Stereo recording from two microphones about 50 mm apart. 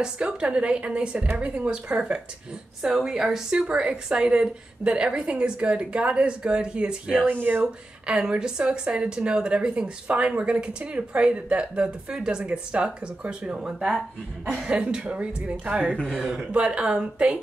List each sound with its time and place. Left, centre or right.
0.0 s speech: right
2.8 s speech: centre
3.5 s speech: centre
7.2 s speech: right
8.1 s speech: right
12.7 s speech: right; by 13.9 s centre
14.7 s speech: right
16.1 s speech: centre
16.5 s speech: right